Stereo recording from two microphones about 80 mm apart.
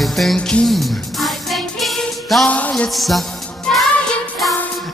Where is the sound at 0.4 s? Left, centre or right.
Centre.